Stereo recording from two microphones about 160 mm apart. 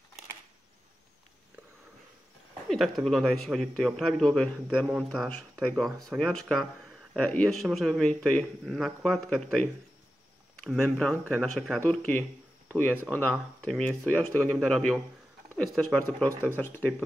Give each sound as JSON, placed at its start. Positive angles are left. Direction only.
{"t": 2.7, "sound": "a man's voice", "side_deg": 0}
{"t": 16.3, "sound": "speech", "side_deg": -20}
{"t": 16.5, "sound": "speech", "side_deg": 10}